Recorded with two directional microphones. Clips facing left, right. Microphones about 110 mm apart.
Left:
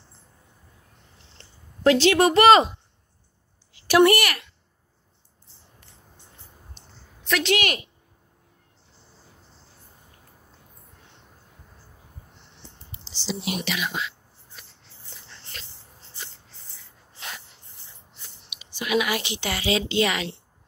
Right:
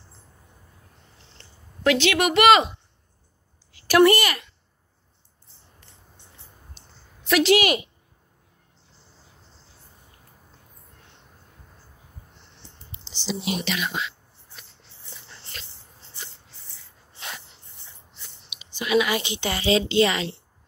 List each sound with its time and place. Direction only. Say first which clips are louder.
1.4 s speech: left 3 dB; 35° left (ahead or behind)
3.7 s a woman's voice: right 1 dB; 20° left (ahead or behind)
6.8 s a sound: left 1 dB; 5° right (ahead or behind)
7.2 s a woman's voice: right 5 dB; 5° right (ahead or behind)
13.7 s speech: right 1 dB; 5° left (ahead or behind)
18.6 s a woman's voice: right 3 dB; 10° left (ahead or behind)